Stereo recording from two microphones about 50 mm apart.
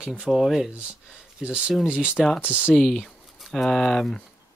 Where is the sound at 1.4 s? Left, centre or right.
Centre.